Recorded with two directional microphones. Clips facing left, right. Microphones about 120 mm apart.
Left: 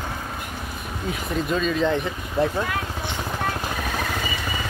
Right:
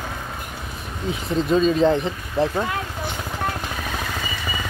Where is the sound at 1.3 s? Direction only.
35° right (ahead or behind).